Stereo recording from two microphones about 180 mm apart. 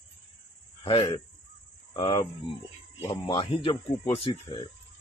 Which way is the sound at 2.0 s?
35° left (ahead or behind).